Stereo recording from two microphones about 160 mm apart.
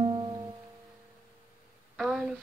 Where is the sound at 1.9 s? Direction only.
Centre (ahead or behind).